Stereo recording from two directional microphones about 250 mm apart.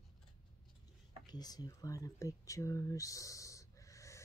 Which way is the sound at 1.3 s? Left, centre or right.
Centre.